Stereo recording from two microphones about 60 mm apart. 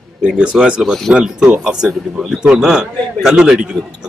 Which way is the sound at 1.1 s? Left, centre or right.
Centre.